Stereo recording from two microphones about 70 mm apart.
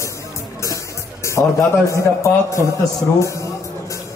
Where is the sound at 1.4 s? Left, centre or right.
Left.